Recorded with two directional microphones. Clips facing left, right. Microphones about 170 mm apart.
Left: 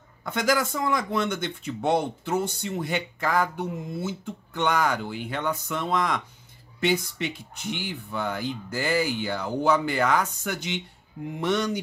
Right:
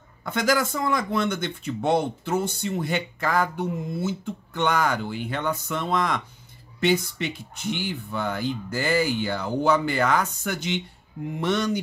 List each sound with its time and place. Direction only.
0.2 s speech: 15° left (ahead or behind)